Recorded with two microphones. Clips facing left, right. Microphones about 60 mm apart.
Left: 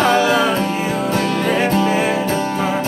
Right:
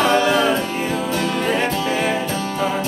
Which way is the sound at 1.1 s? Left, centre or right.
Left.